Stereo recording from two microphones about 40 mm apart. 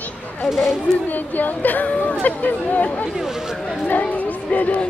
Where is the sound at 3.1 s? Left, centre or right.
Centre.